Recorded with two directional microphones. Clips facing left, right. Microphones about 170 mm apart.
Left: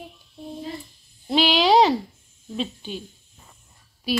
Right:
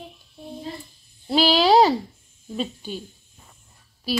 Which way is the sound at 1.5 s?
5° right (ahead or behind).